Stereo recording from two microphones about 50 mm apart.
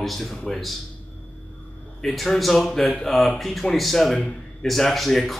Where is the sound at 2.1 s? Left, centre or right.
Centre.